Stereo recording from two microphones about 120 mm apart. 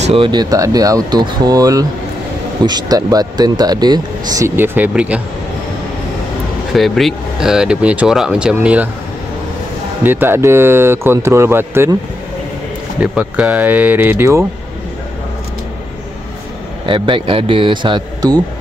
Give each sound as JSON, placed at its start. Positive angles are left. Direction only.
{"t": 0.0, "sound": "speech", "side_deg": -50}
{"t": 6.7, "sound": "speech", "side_deg": 0}
{"t": 10.0, "sound": "speech", "side_deg": -15}
{"t": 13.0, "sound": "speech", "side_deg": -10}
{"t": 16.8, "sound": "speech", "side_deg": -45}